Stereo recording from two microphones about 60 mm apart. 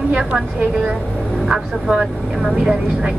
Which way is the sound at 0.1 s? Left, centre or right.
Centre.